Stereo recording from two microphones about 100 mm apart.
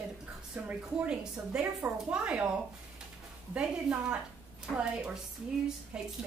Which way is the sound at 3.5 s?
10° right (ahead or behind).